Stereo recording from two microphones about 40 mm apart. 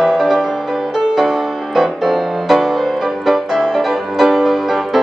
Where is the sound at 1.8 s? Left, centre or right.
Centre.